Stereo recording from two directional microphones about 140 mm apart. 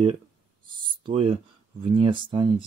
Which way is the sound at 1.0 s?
45° right (ahead or behind).